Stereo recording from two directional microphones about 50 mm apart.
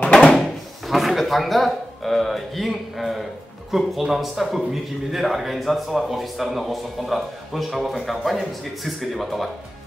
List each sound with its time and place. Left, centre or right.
0.0 s drawer open or close: centre
0.4 s drawer open or close: centre
3.7 s a man's voice: centre